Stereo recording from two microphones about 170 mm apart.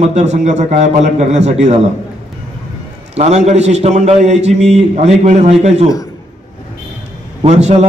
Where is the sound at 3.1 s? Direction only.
40° right (ahead or behind).